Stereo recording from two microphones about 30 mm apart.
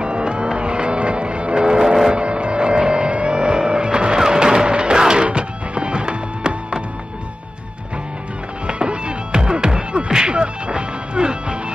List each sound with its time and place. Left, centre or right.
0.0 s music: right
1.6 s vehicle: right
2.1 s vehicle: right
4.2 s music: right
8.6 s music: right